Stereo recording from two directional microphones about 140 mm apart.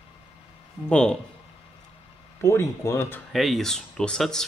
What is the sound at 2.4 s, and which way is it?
Speech, 20° left (ahead or behind).